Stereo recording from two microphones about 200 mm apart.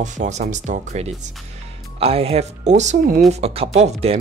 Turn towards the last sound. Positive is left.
turn(degrees=-35)  # may be behind; listen again after turning